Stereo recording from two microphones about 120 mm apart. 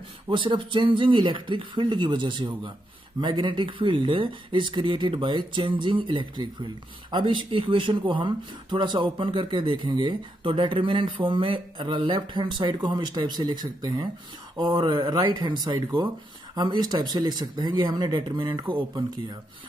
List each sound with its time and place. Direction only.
0.3 s speech: 45° right (ahead or behind)